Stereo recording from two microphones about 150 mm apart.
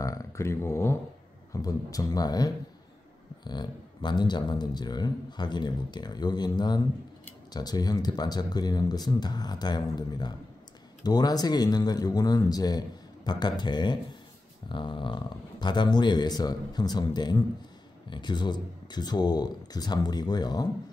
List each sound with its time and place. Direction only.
0.0 s speech: 20° left (ahead or behind)